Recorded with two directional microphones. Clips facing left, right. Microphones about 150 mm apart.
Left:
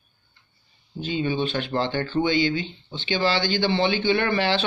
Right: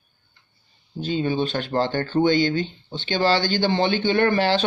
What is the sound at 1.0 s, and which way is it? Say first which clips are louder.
Speech: right 2 dB; 40° right (ahead or behind).